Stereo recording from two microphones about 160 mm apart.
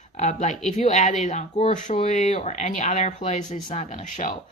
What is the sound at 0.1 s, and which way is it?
Speech, 45° left (ahead or behind).